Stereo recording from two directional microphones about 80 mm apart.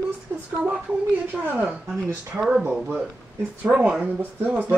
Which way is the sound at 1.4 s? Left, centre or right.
Centre.